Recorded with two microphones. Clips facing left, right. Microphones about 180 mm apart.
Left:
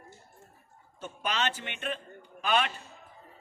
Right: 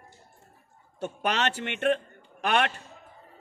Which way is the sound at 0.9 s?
70° right (ahead or behind).